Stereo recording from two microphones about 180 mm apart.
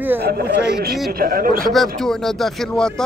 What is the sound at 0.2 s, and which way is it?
A man's voice, 60° right (ahead or behind).